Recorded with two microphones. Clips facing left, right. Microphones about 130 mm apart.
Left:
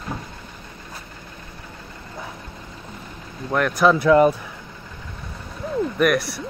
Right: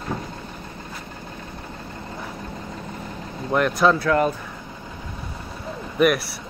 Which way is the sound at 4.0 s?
15° left (ahead or behind).